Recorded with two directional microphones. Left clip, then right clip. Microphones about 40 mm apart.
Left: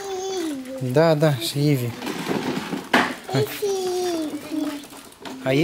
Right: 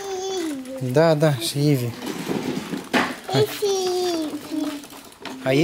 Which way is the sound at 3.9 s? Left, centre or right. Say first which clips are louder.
Right 1 dB; centre.